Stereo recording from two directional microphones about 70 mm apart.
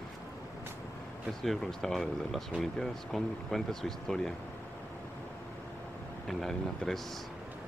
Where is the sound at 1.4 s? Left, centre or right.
Centre.